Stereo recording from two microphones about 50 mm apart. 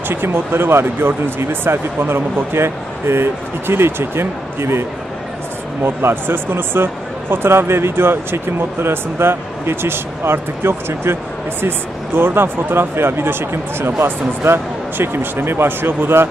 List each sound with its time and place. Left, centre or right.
0.1 s a man's voice: right
5.9 s a man's voice: right
12.2 s a man's voice: right